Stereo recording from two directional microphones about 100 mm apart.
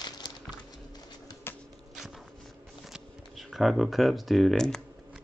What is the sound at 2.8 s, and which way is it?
Speech, centre (ahead or behind).